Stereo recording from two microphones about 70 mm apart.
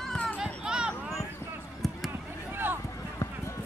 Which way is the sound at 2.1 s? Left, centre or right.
Right.